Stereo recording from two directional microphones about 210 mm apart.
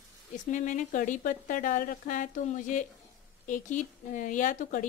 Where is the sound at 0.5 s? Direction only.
35° left (ahead or behind).